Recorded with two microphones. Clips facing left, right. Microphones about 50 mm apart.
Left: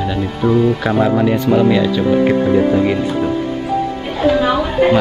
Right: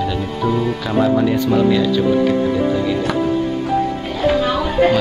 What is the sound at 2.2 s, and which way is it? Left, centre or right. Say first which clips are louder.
Speech: left 3 dB; left.